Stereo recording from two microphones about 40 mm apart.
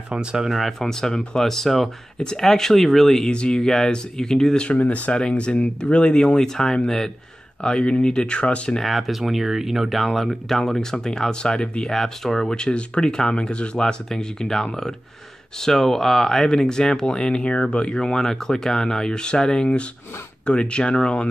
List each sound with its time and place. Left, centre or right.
0.1 s speech: right
0.4 s speech: centre
0.8 s speech: centre
3.3 s speech: left
4.7 s speech: left
5.3 s speech: left
7.6 s speech: left
8.8 s speech: centre; by 11.9 s left
11.9 s speech: centre
12.5 s speech: left
13.7 s speech: centre